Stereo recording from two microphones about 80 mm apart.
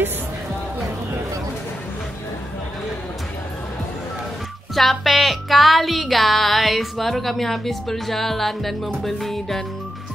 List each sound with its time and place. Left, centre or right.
4.7 s music: centre